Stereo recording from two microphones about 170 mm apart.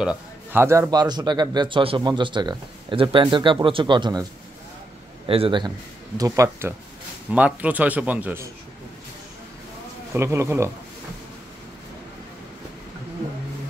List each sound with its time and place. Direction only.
0.0 s a man's voice: 10° right (ahead or behind); by 4.3 s 25° right (ahead or behind)
5.3 s a man's voice: 30° right (ahead or behind)
6.1 s a man's voice: 20° right (ahead or behind)
10.1 s speech: 15° right (ahead or behind)